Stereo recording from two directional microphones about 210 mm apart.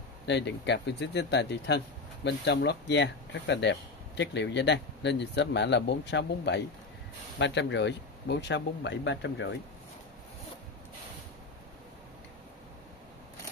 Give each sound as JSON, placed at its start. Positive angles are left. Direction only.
{"t": 0.3, "sound": "speech", "side_deg": 55}